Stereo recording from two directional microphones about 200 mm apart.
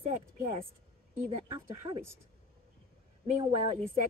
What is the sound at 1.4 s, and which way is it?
Speech, 25° right (ahead or behind).